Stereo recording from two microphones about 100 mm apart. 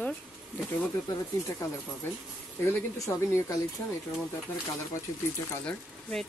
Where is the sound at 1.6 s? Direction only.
35° left (ahead or behind).